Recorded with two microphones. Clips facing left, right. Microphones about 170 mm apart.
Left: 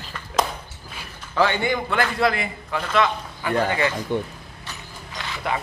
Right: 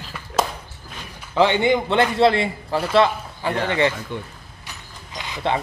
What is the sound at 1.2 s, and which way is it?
A man's voice, 20° right (ahead or behind).